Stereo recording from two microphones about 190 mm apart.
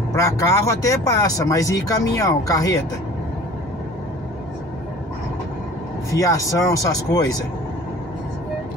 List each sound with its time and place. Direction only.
0.1 s speech: 15° left (ahead or behind)
6.1 s speech: 15° left (ahead or behind)